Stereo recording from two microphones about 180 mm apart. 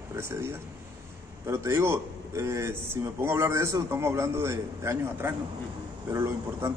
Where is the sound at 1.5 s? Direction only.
15° right (ahead or behind).